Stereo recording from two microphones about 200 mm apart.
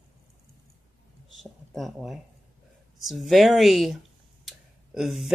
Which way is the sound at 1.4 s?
Centre (ahead or behind).